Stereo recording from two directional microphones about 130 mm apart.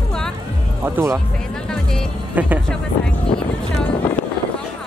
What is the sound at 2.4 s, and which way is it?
Speech, 10° right (ahead or behind).